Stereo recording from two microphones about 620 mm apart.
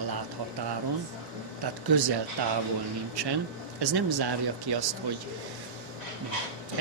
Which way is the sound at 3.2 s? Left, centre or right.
Right.